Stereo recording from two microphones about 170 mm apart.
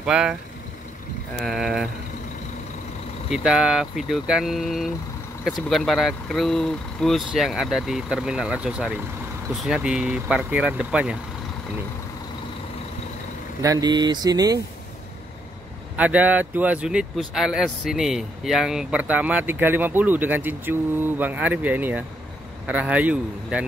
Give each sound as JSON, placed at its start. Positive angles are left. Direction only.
{"t": 0.0, "sound": "speech", "side_deg": -5}
{"t": 1.4, "sound": "speech", "side_deg": 0}
{"t": 3.3, "sound": "speech", "side_deg": -5}
{"t": 13.6, "sound": "speech", "side_deg": -20}
{"t": 16.0, "sound": "speech", "side_deg": -10}